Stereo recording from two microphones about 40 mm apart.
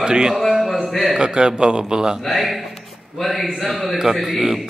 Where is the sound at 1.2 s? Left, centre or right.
Right.